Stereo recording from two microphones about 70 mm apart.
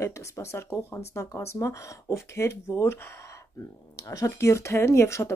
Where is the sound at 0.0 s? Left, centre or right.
Left.